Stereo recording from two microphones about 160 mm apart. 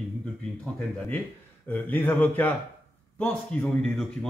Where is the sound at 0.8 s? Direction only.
10° left (ahead or behind).